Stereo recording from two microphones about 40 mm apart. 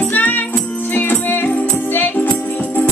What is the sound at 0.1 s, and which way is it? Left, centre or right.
Music, left.